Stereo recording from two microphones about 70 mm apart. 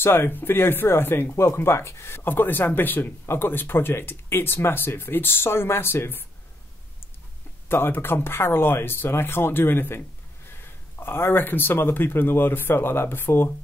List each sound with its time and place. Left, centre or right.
0.0 s speech: left
7.6 s speech: left